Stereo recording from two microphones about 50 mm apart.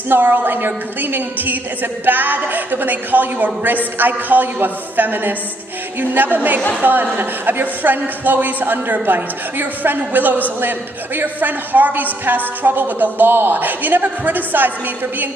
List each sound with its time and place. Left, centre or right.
0.1 s a woman's voice: right